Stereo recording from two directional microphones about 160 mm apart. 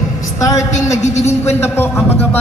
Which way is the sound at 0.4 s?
20° left (ahead or behind).